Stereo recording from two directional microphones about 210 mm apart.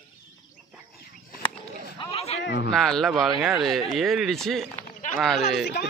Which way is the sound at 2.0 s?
30° left (ahead or behind).